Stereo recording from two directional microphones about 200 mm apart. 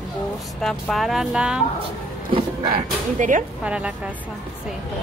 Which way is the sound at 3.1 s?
40° right (ahead or behind).